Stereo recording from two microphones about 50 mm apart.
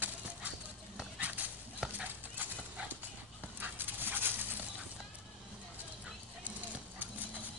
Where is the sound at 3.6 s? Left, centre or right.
Right.